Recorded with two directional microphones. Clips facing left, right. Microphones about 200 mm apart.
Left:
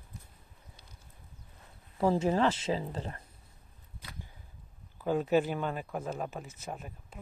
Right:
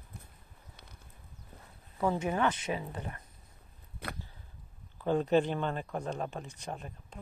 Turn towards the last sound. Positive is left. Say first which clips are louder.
# even
turn(degrees=5)  # may be behind; listen again after turning